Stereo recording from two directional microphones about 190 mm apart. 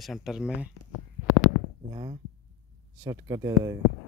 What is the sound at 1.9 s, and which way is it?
Speech, 20° right (ahead or behind).